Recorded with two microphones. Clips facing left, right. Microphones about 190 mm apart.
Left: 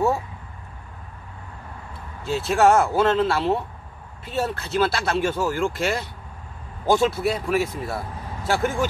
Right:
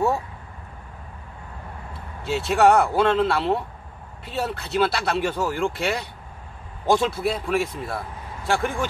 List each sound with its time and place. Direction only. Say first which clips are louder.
2.2 s speech: even; centre (ahead or behind)